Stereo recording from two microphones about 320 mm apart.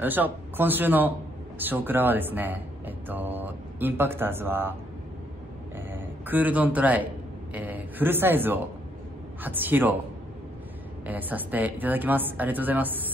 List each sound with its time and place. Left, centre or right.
0.0 s speech: centre
5.8 s a sound: centre
7.5 s speech: centre
11.1 s speech: centre